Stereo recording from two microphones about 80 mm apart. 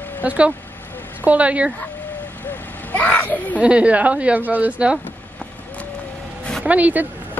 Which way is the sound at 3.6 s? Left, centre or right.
Centre.